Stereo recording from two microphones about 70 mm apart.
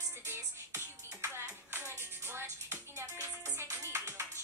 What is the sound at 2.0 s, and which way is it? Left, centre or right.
Music, right.